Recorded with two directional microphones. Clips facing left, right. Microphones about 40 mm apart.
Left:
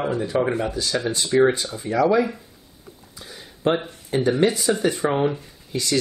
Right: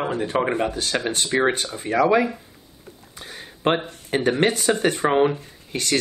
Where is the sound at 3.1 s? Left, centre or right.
Right.